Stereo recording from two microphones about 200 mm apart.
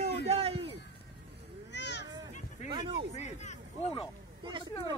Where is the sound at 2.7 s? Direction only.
25° right (ahead or behind).